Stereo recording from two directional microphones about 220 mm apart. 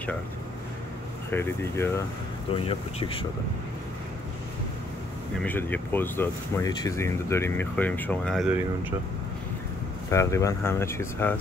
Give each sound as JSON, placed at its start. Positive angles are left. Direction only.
{"t": 1.3, "sound": "speech", "side_deg": 10}
{"t": 2.6, "sound": "speech", "side_deg": 25}
{"t": 5.4, "sound": "speech", "side_deg": 10}
{"t": 10.0, "sound": "speech", "side_deg": 15}